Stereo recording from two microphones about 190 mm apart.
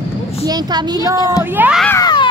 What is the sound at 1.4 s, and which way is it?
Speech, 10° right (ahead or behind).